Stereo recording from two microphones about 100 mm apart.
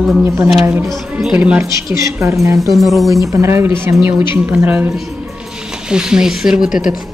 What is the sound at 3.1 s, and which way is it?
A woman's voice, 30° right (ahead or behind).